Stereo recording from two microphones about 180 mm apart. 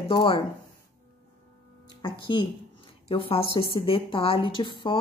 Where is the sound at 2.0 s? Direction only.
25° left (ahead or behind).